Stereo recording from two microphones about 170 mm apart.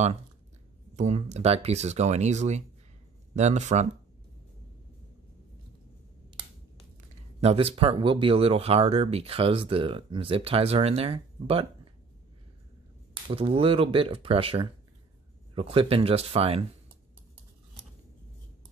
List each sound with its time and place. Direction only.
0.9 s speech: 40° right (ahead or behind)
7.3 s speech: 35° right (ahead or behind)
13.1 s speech: 35° right (ahead or behind)